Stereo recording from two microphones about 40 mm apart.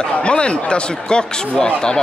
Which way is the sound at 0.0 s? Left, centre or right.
Left.